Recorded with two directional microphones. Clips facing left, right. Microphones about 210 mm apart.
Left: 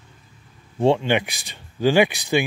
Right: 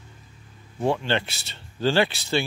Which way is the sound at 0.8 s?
25° left (ahead or behind).